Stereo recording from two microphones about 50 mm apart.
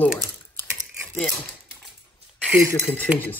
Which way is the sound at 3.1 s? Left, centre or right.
Centre.